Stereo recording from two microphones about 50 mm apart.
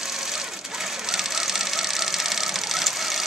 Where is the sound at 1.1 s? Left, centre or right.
Centre.